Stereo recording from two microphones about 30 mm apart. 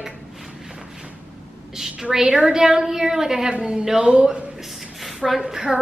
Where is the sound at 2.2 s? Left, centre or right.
Right.